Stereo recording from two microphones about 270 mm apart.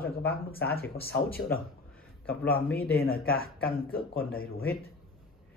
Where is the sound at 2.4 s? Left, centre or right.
Left.